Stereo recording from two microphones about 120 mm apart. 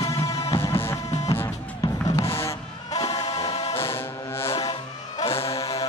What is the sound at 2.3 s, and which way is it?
Music, 20° left (ahead or behind).